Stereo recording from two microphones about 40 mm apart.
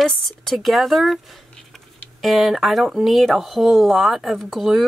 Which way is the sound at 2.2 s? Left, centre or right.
Centre.